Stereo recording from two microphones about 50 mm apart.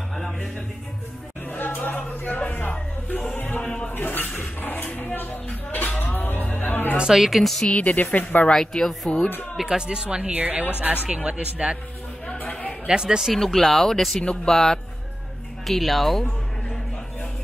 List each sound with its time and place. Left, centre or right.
0.1 s music: centre
1.5 s music: left
3.6 s music: left
3.9 s a sound: left
7.2 s speech: centre
7.7 s a woman's voice: left
8.5 s speech: centre
9.6 s speech: centre
10.3 s a woman's voice: right
11.1 s a man's voice: right
12.8 s speech: centre
13.2 s speech: centre